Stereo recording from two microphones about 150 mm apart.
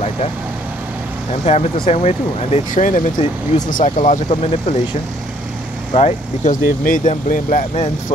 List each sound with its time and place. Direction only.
1.4 s speech: 45° left (ahead or behind)
5.9 s speech: 50° left (ahead or behind)